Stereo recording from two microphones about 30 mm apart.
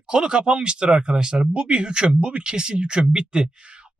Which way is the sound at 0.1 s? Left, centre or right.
Right.